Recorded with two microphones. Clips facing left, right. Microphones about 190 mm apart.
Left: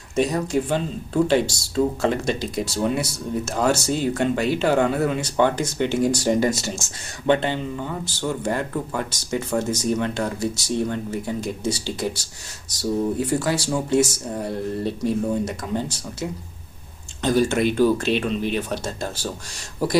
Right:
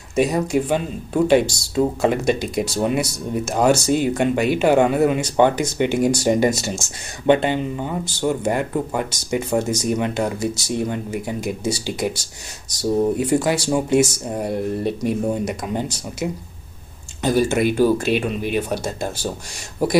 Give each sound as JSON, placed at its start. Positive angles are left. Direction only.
{"t": 0.1, "sound": "speech", "side_deg": -10}
{"t": 13.2, "sound": "speech", "side_deg": -15}